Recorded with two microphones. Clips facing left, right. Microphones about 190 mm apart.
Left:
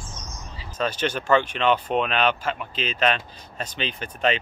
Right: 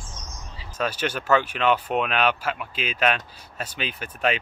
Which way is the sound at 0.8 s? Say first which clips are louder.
Left 1 dB; 10° right (ahead or behind).